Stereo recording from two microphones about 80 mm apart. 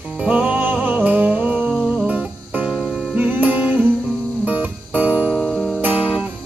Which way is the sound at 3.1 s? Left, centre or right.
Centre.